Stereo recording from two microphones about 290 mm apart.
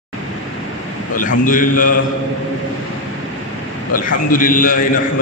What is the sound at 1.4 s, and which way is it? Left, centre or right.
Mantra, left.